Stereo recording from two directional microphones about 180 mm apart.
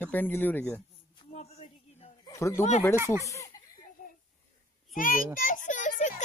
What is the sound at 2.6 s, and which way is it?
Speech, 40° left (ahead or behind).